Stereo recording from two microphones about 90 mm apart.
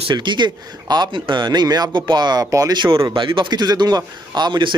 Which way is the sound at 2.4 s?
40° right (ahead or behind).